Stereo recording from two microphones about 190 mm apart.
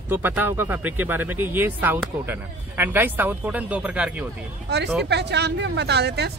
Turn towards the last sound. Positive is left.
turn(degrees=-60)  # may be behind; listen again after turning